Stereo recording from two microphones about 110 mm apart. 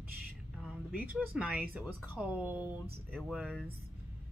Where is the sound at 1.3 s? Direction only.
15° right (ahead or behind).